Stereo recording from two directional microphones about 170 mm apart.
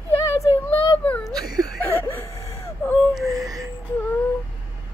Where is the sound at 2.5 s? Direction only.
15° left (ahead or behind).